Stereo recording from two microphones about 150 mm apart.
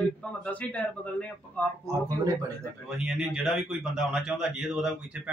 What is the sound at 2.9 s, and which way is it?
A man's voice, 5° right (ahead or behind).